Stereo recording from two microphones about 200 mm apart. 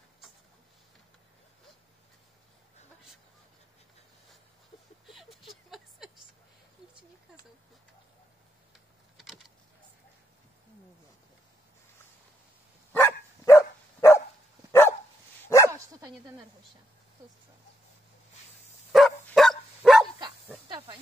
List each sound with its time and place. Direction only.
5.0 s a sound: centre (ahead or behind)
9.1 s a sound: centre (ahead or behind)
12.9 s dog: 10° left (ahead or behind)
15.7 s dog: 20° right (ahead or behind)
18.9 s dog: centre (ahead or behind)
20.6 s snake: 25° right (ahead or behind)